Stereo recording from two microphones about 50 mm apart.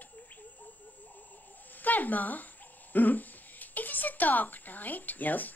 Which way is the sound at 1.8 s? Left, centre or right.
Left.